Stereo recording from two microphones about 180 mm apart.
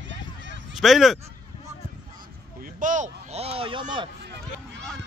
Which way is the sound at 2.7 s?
45° right (ahead or behind).